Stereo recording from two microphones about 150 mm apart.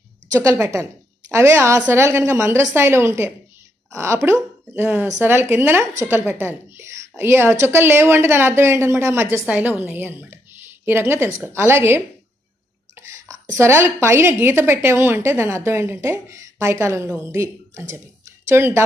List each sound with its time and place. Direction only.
0.6 s a woman's voice: 20° right (ahead or behind)